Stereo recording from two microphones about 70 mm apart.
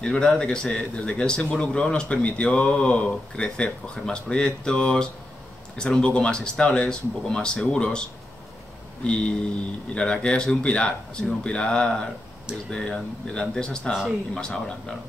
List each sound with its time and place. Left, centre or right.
0.0 s a man's voice: centre
6.0 s a man's voice: centre
9.0 s a man's voice: centre